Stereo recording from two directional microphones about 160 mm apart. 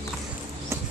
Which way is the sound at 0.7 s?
15° right (ahead or behind).